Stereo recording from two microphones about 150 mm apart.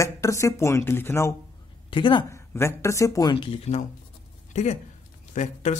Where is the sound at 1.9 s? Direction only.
35° left (ahead or behind).